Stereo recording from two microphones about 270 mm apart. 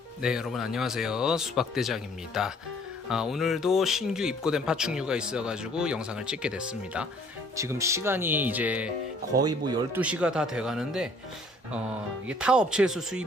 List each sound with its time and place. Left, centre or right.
0.2 s speech: centre
10.0 s speech: centre
12.3 s speech: centre